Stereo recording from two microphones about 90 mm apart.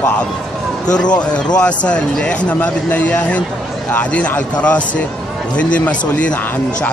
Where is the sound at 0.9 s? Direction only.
10° left (ahead or behind).